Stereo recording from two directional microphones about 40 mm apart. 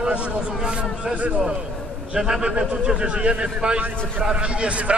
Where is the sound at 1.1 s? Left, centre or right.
Right.